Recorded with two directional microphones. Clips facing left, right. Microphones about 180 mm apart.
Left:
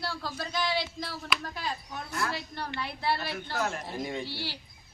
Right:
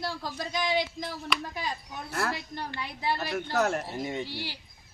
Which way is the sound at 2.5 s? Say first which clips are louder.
Left 1 dB; 15° right (ahead or behind).